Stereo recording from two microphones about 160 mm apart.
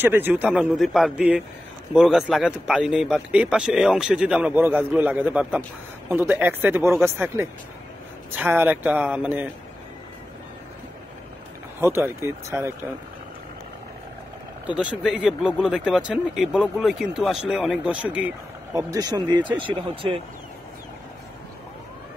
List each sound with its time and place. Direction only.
0.0 s a man's voice: 15° right (ahead or behind)
11.8 s a man's voice: 15° right (ahead or behind)
14.8 s speech: 5° right (ahead or behind)
18.8 s speech: 20° right (ahead or behind)